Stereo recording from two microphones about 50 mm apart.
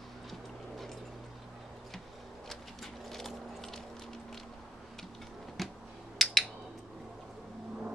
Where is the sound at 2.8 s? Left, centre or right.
Centre.